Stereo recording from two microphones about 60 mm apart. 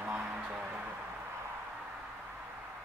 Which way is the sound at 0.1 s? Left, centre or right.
Centre.